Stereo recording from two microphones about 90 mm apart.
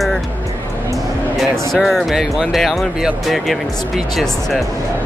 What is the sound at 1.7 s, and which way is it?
Speech, centre (ahead or behind).